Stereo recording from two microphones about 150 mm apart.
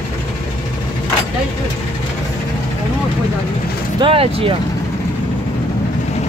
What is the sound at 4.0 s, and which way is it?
Vehicle, 40° right (ahead or behind).